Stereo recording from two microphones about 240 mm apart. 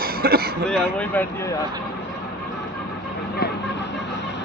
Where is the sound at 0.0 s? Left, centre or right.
Right.